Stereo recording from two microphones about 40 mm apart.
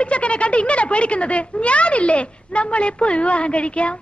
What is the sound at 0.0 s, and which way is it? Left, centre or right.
A man's voice, left.